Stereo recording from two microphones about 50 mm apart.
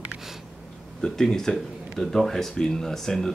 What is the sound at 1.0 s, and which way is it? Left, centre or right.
Speech, centre.